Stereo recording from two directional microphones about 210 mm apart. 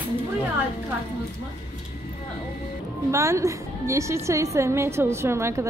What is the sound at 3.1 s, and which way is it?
A woman's voice, 15° right (ahead or behind).